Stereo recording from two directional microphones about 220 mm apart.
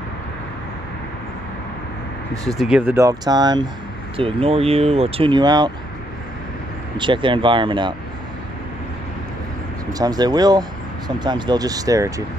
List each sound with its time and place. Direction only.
2.4 s speech: centre (ahead or behind); by 5.7 s 20° right (ahead or behind)
7.0 s speech: 20° right (ahead or behind)
9.9 s speech: 20° right (ahead or behind)